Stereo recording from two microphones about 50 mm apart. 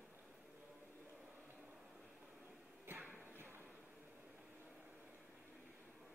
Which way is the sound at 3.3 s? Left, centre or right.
Right.